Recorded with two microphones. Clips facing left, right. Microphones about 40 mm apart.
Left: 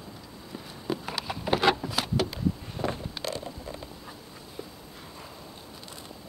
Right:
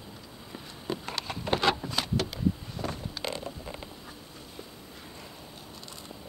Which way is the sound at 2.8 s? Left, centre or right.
Left.